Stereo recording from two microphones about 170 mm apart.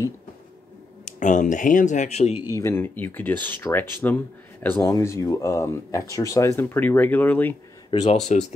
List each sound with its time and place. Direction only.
1.0 s speech: 45° left (ahead or behind)
2.5 s speech: 15° left (ahead or behind)
8.0 s speech: 40° left (ahead or behind)